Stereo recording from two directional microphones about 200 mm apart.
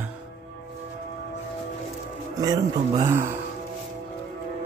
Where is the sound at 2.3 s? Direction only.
20° right (ahead or behind).